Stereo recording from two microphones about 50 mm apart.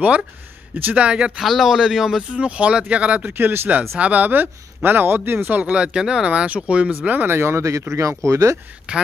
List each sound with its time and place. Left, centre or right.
0.9 s speech: right
1.4 s a man's voice: centre
2.3 s speech: right
3.3 s speech: right
5.6 s speech: centre
7.2 s speech: right
8.9 s speech: right